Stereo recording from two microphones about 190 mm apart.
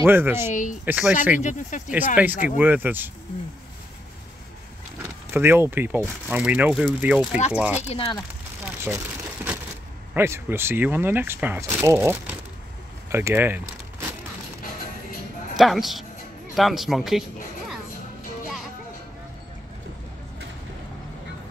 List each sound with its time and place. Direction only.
0.0 s speech: 10° right (ahead or behind)
0.5 s speech: 40° left (ahead or behind)
0.8 s speech: 5° right (ahead or behind)
1.4 s speech: 40° left (ahead or behind)
2.2 s speech: 10° right (ahead or behind)
5.0 s speech: 15° right (ahead or behind)
7.9 s speech: 30° left (ahead or behind)
8.6 s a sound: 10° right (ahead or behind)
10.1 s speech: 15° right (ahead or behind)
15.5 s speech: centre (ahead or behind)